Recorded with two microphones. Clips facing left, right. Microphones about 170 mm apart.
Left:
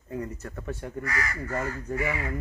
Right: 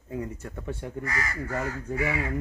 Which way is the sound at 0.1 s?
10° right (ahead or behind).